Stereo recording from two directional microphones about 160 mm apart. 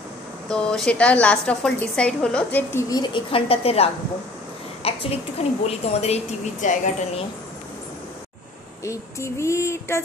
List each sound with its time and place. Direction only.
0.5 s a woman's voice: 5° left (ahead or behind)
2.9 s a woman's voice: 30° left (ahead or behind)
6.6 s speech: 50° left (ahead or behind)
8.8 s a woman's voice: 20° left (ahead or behind)